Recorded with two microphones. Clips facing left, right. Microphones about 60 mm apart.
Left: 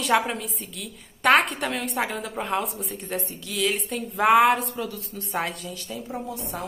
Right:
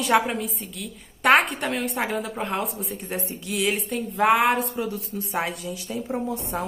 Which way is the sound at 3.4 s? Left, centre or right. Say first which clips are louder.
Right 1 dB; centre.